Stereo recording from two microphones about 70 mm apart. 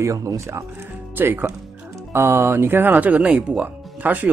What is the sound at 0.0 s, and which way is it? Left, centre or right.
Speech, right.